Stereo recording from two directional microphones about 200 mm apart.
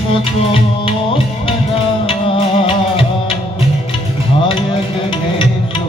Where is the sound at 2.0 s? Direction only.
25° left (ahead or behind).